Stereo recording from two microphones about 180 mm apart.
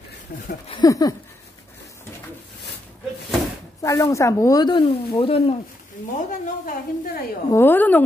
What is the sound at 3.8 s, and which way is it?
Speech, 20° left (ahead or behind).